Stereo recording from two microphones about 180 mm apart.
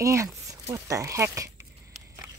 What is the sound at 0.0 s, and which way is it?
Speech, 15° right (ahead or behind).